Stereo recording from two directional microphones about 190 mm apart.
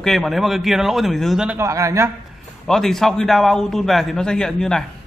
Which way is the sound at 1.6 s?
15° right (ahead or behind).